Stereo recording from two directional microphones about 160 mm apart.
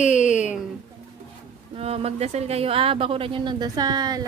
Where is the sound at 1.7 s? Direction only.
40° right (ahead or behind).